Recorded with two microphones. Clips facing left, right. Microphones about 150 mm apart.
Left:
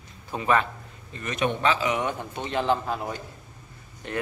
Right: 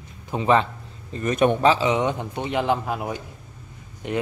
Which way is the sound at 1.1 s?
40° right (ahead or behind).